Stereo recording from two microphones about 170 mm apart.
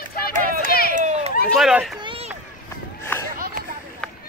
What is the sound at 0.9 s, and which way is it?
Run, 45° right (ahead or behind).